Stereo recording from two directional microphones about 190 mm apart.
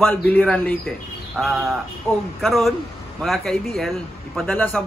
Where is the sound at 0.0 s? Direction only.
10° left (ahead or behind).